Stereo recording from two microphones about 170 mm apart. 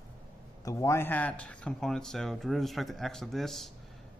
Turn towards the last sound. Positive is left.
turn(degrees=0)  # may be behind; listen again after turning